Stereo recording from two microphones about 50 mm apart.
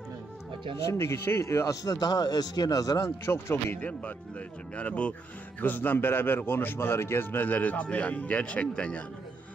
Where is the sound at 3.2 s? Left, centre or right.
Left.